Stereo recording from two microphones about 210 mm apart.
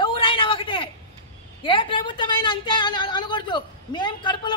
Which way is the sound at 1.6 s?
25° left (ahead or behind).